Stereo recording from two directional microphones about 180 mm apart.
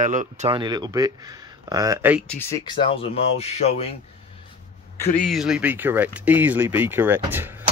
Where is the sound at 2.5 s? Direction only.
25° left (ahead or behind).